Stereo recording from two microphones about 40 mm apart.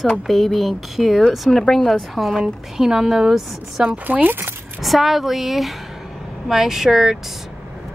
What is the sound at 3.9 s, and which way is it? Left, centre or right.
Speech, right.